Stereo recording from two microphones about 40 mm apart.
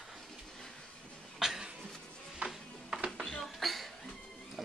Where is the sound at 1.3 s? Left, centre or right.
Centre.